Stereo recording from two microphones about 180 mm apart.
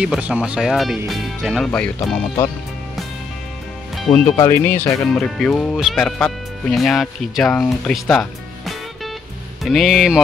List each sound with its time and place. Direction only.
0.0 s speech: 5° right (ahead or behind)
2.0 s speech: 20° left (ahead or behind)
4.1 s speech: 25° left (ahead or behind)
4.5 s speech: 10° left (ahead or behind)